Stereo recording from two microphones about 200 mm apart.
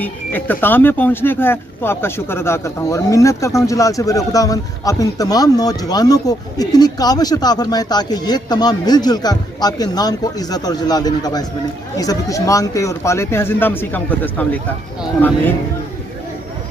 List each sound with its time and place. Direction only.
0.0 s speech: 10° left (ahead or behind)